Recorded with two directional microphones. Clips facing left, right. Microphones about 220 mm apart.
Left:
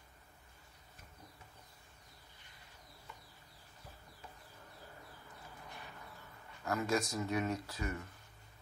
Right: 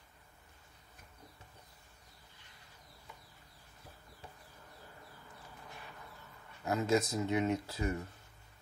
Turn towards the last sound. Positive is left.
turn(degrees=-30)  # may be behind; listen again after turning